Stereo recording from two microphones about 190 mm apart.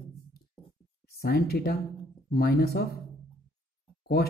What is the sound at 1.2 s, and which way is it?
A man's voice, 55° left (ahead or behind).